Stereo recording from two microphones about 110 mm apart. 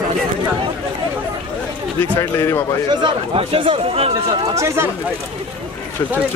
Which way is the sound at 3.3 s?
55° right (ahead or behind).